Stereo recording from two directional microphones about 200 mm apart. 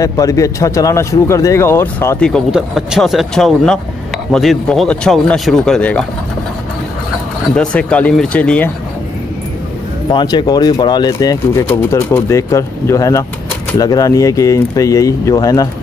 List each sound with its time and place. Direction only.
0.0 s speech: 15° left (ahead or behind)
7.5 s speech: 5° left (ahead or behind)
10.1 s speech: 20° left (ahead or behind)